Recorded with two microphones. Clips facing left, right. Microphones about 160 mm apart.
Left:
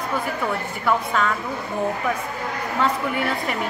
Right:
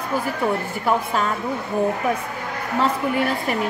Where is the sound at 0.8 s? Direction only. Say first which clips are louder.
Even; 30° right (ahead or behind).